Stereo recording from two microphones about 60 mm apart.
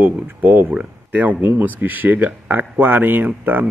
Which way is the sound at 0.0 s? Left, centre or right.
Right.